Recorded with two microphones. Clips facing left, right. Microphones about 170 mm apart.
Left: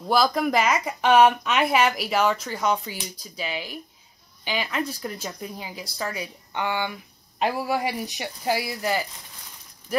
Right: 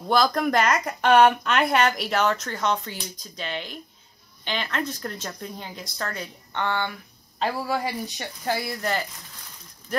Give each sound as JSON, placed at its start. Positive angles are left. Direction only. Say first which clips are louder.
{"t": 0.1, "sound": "speech", "louder": "even", "side_deg": 5}